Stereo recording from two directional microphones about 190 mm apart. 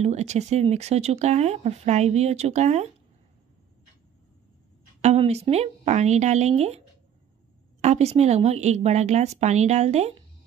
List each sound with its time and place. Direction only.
0.0 s speech: 35° right (ahead or behind)
5.0 s speech: 35° right (ahead or behind)
7.8 s speech: 35° right (ahead or behind)